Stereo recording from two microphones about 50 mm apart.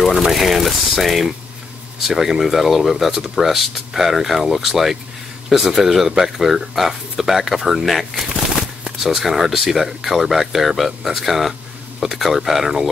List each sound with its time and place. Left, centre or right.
0.0 s speech: centre
8.3 s a sound: centre
9.0 s speech: centre